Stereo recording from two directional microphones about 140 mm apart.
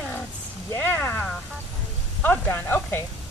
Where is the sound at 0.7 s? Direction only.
15° left (ahead or behind).